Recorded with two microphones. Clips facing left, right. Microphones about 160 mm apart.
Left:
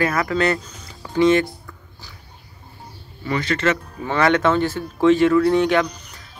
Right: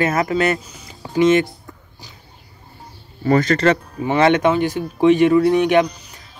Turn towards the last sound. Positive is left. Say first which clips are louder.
# right 2 dB
turn(degrees=-20)  # may be behind; listen again after turning